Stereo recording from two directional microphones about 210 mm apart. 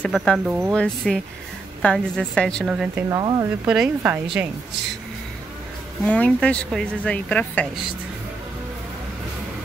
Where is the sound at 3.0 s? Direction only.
20° right (ahead or behind).